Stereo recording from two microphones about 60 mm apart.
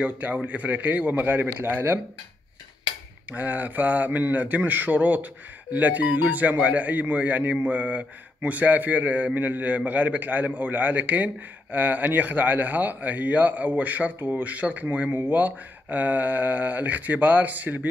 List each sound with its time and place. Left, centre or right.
0.0 s speech: right
3.3 s speech: right